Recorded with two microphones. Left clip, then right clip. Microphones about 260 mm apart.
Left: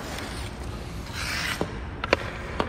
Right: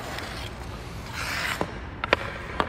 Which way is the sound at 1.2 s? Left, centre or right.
Right.